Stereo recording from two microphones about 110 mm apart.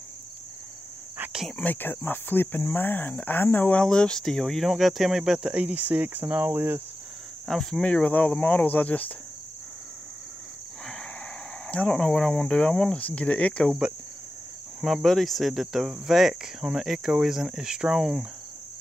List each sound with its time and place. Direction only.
1.1 s cricket: 15° right (ahead or behind)
1.6 s speech: 15° left (ahead or behind)
3.8 s cricket: 5° left (ahead or behind); by 6.8 s 20° right (ahead or behind)
7.4 s speech: centre (ahead or behind)
11.6 s speech: 10° left (ahead or behind)
13.7 s cricket: 5° right (ahead or behind)